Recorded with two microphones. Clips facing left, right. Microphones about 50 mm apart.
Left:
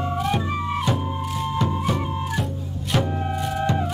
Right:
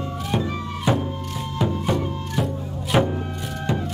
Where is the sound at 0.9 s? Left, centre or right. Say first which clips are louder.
Right 7 dB; centre.